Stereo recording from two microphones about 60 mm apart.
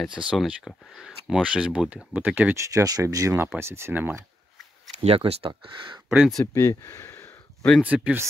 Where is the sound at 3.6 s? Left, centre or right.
Right.